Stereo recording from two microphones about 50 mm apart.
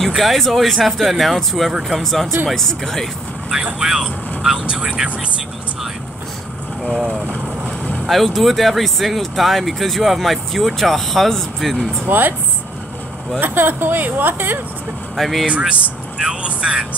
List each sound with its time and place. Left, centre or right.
0.0 s speech: centre
3.8 s speech: centre
4.6 s speech: right
6.8 s speech: centre
8.1 s speech: centre
12.1 s speech: right
13.4 s speech: right
15.1 s speech: centre
16.2 s speech: centre